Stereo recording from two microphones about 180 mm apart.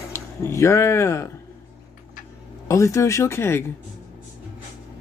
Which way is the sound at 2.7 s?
15° left (ahead or behind).